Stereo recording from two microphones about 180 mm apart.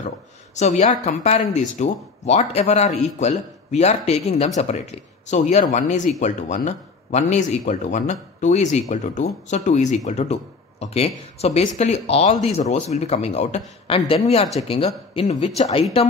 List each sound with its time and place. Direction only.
0.6 s speech: 40° left (ahead or behind)